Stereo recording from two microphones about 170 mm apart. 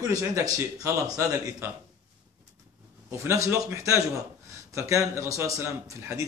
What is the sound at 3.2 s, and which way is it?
Speech, 15° right (ahead or behind).